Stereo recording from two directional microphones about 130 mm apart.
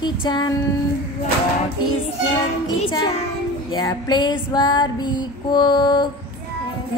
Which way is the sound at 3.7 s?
35° left (ahead or behind).